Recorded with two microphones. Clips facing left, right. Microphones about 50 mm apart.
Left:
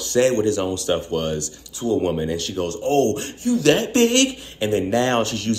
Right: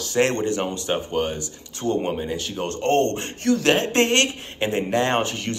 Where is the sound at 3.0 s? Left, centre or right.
Right.